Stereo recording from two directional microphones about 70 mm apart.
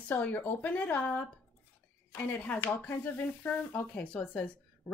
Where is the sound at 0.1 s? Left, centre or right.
Left.